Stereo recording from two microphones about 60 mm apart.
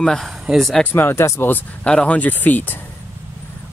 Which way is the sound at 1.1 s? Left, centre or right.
Left.